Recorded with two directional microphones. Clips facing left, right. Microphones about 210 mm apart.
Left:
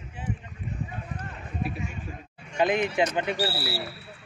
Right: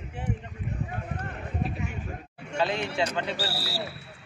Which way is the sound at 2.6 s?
15° left (ahead or behind).